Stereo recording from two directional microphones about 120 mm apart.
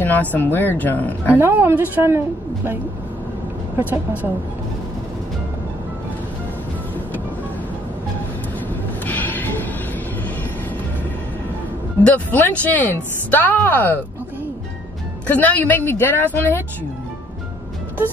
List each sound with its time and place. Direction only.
0.0 s speech: 15° left (ahead or behind)
1.3 s a woman's voice: 20° right (ahead or behind)
9.0 s train: 15° left (ahead or behind)
12.0 s speech: 15° left (ahead or behind)
15.2 s speech: 15° left (ahead or behind)